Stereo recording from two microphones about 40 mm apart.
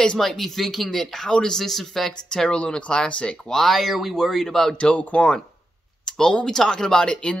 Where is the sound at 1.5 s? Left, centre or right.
Centre.